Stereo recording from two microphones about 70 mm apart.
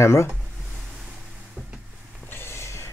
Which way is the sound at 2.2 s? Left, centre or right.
Left.